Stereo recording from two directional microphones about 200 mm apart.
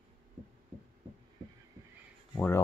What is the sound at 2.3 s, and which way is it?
Speech, 15° left (ahead or behind).